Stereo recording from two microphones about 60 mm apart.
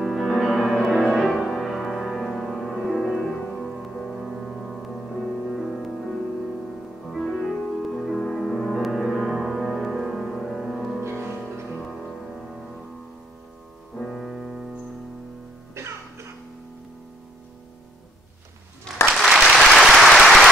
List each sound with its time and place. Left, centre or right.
0.0 s music: centre
13.9 s music: centre
15.8 s music: right
19.1 s applause: centre